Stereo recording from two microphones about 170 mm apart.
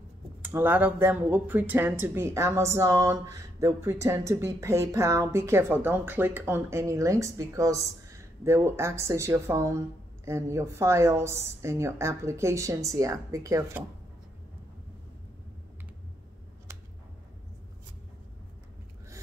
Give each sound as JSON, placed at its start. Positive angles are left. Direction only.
{"t": 0.4, "sound": "speech", "side_deg": -10}